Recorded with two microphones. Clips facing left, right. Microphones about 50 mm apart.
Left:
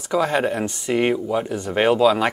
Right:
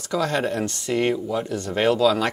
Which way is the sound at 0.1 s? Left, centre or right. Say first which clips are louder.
Left 3 dB; centre.